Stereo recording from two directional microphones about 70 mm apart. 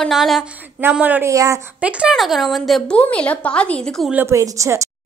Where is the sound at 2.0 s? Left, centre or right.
Centre.